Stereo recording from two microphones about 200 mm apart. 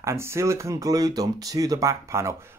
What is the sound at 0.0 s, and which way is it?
Speech, 15° right (ahead or behind).